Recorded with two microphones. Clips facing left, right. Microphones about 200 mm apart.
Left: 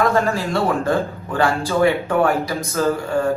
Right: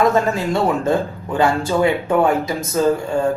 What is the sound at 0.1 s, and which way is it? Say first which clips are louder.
Speech: right 1 dB; 20° right (ahead or behind).